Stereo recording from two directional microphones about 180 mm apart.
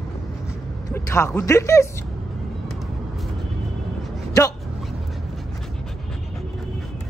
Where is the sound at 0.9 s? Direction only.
15° left (ahead or behind).